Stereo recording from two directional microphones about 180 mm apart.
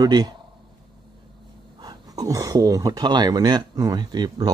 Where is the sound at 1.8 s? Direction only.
20° right (ahead or behind).